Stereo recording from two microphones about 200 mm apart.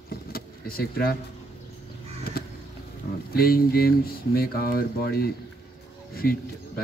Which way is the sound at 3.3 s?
50° left (ahead or behind).